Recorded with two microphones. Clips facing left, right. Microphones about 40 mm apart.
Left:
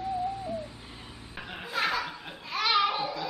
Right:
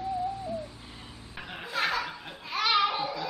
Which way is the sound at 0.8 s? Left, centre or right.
Centre.